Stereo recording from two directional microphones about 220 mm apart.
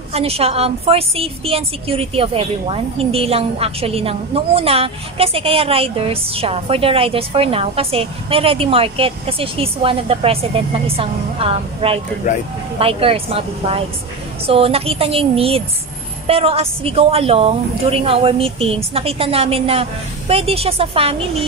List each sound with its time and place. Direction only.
0.1 s a woman's voice: 25° right (ahead or behind)
12.2 s speech: 35° left (ahead or behind)
12.7 s a woman's voice: 25° right (ahead or behind)